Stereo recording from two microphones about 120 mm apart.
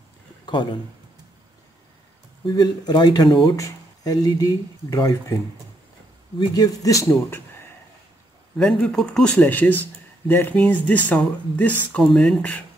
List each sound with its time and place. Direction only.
0.5 s speech: 40° left (ahead or behind)
2.4 s speech: 35° left (ahead or behind)
6.5 s speech: 30° left (ahead or behind)
8.5 s speech: 5° left (ahead or behind)